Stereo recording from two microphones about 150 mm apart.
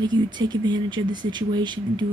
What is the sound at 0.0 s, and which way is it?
A woman's voice, 30° right (ahead or behind).